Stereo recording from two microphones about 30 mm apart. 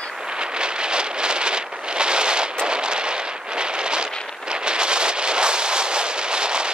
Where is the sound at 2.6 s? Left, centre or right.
Right.